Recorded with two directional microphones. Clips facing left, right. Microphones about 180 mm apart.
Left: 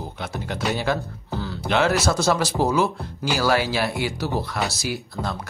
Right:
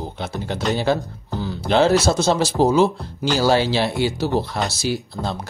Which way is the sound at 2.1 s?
25° right (ahead or behind).